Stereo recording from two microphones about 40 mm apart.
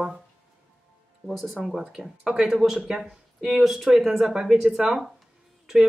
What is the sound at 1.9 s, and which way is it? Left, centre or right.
Speech, centre.